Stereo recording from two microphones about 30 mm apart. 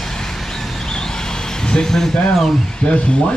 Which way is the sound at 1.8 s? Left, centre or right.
Centre.